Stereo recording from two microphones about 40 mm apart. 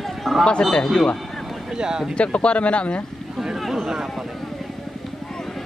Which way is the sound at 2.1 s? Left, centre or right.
Left.